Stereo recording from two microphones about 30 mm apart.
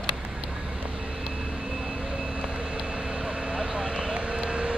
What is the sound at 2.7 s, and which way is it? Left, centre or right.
Vehicle, right.